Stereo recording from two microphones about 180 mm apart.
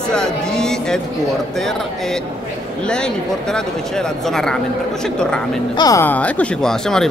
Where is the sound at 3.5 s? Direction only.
5° left (ahead or behind).